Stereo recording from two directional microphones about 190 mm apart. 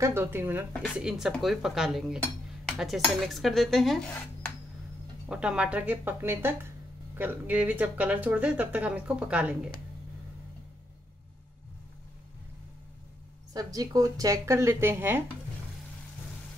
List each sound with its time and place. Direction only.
0.0 s speech: 10° right (ahead or behind)
5.3 s speech: 5° right (ahead or behind)
13.5 s speech: 20° right (ahead or behind)